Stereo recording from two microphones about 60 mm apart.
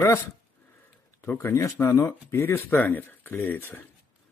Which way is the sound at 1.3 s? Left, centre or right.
Left.